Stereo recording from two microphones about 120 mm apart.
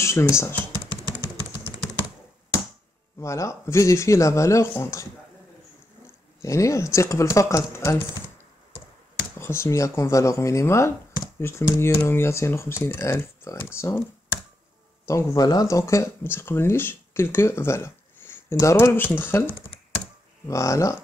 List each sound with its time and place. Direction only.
0.0 s speech: 25° left (ahead or behind)
3.2 s speech: 25° left (ahead or behind)
6.0 s speech: 25° left (ahead or behind)
9.4 s speech: 20° left (ahead or behind)
15.0 s speech: 30° left (ahead or behind)